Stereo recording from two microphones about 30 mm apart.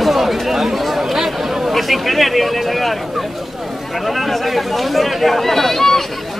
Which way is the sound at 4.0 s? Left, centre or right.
Centre.